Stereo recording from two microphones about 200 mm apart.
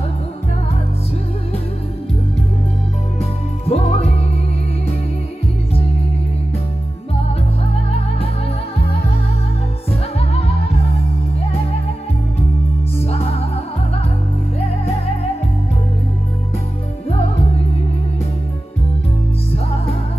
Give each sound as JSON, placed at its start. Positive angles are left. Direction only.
{"t": 3.2, "sound": "music", "side_deg": 30}
{"t": 10.1, "sound": "music", "side_deg": 30}
{"t": 13.0, "sound": "music", "side_deg": 30}